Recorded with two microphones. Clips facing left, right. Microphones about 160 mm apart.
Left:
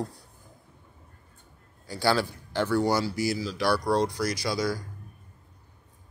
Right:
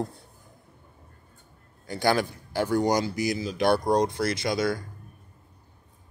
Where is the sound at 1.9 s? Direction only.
20° right (ahead or behind).